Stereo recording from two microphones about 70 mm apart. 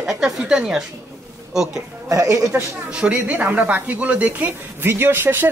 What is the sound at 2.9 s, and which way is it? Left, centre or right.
Speech, centre.